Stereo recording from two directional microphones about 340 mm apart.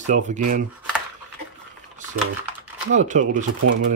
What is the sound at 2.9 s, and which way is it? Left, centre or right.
Speech, right.